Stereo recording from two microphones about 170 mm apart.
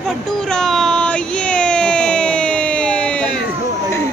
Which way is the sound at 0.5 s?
Centre (ahead or behind).